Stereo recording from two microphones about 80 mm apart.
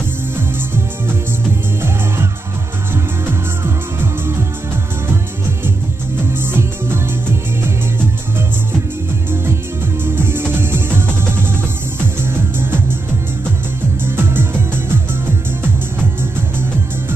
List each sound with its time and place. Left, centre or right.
3.6 s music: right
6.3 s music: right
10.0 s music: right
14.0 s music: right